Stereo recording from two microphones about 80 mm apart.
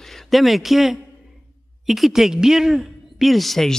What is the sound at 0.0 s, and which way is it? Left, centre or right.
Speech, centre.